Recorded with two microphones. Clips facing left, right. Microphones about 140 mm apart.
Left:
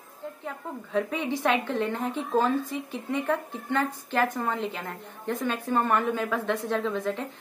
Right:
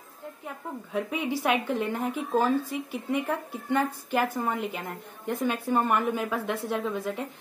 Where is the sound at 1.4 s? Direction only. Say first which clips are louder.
Left 1 dB; 10° right (ahead or behind).